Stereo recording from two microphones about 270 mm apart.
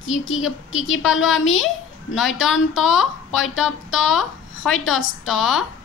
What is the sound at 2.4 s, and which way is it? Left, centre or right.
A woman's voice, centre.